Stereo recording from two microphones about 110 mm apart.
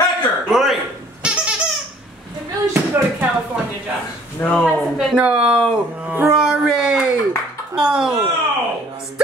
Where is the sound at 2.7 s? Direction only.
20° right (ahead or behind).